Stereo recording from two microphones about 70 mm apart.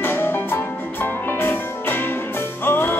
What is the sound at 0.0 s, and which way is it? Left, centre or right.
Music, left.